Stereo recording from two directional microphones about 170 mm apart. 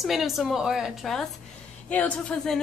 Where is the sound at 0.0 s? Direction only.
Centre (ahead or behind).